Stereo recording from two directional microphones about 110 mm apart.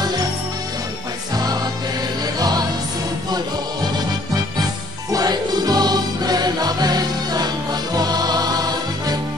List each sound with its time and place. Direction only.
1.3 s music: 35° right (ahead or behind)
5.1 s music: 40° right (ahead or behind)